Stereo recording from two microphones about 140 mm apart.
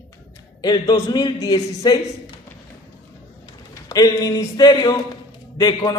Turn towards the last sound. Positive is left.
turn(degrees=30)  # may be behind; listen again after turning